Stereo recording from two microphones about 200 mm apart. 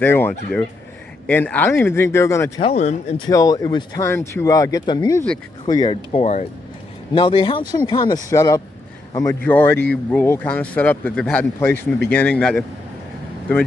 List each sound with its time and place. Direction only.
0.0 s speech: 10° left (ahead or behind)
2.6 s speech: 35° left (ahead or behind)
3.3 s a man's voice: 20° left (ahead or behind)